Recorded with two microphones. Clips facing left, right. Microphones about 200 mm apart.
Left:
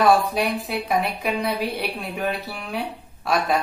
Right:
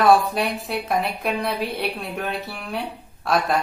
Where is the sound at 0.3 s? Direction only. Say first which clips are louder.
Left 1 dB; centre (ahead or behind).